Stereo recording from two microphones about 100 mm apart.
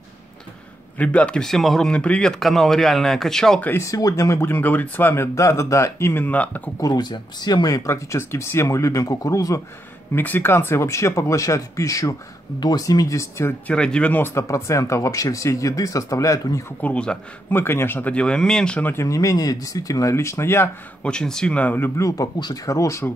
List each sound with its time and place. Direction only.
0.9 s speech: 10° left (ahead or behind)
3.6 s speech: 30° left (ahead or behind)
6.8 s speech: 45° left (ahead or behind)
10.1 s speech: 20° left (ahead or behind)
13.7 s speech: 10° left (ahead or behind)
14.3 s speech: 30° left (ahead or behind)
16.8 s speech: 10° left (ahead or behind)
17.5 s speech: 25° left (ahead or behind)
19.0 s speech: 35° left (ahead or behind)
21.0 s speech: 10° left (ahead or behind); by 23.0 s 30° left (ahead or behind)